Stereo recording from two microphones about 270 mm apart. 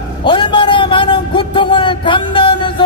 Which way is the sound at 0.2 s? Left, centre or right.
Centre.